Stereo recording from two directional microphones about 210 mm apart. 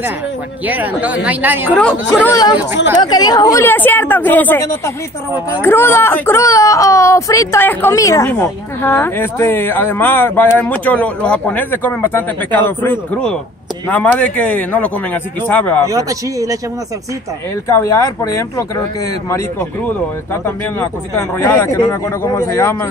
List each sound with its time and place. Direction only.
0.7 s speech: 5° right (ahead or behind)
1.7 s speech: 5° left (ahead or behind)
2.3 s speech: 20° left (ahead or behind)
15.9 s speech: 15° right (ahead or behind)
17.6 s speech: 15° left (ahead or behind)
20.4 s speech: 10° left (ahead or behind)